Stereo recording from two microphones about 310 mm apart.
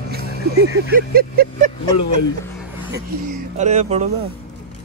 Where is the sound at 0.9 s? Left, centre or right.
Right.